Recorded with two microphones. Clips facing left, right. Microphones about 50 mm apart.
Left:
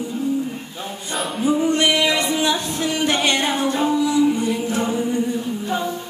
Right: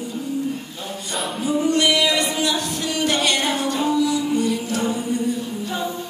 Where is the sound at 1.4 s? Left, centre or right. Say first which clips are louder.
Left 1 dB; left.